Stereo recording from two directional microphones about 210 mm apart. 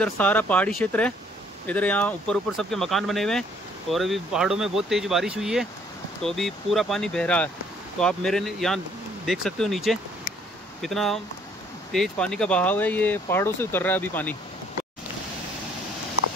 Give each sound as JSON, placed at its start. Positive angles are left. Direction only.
{"t": 0.0, "sound": "speech", "side_deg": 5}